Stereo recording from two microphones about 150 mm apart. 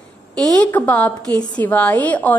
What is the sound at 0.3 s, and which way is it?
Speech, 25° right (ahead or behind).